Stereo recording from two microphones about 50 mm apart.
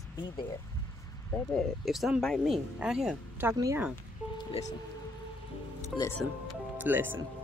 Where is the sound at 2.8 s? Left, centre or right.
Centre.